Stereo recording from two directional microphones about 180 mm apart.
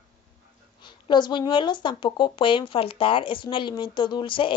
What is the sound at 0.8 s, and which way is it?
Speech, 25° left (ahead or behind).